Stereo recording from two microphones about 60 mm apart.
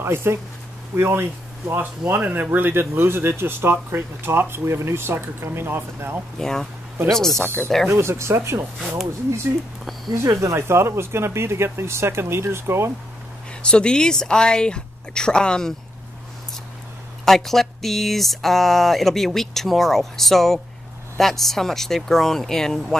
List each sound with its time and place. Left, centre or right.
0.0 s speech: right
2.1 s speech: right
6.3 s speech: centre
7.9 s speech: right
8.7 s speech: centre
10.1 s speech: right
13.6 s speech: centre
17.2 s speech: centre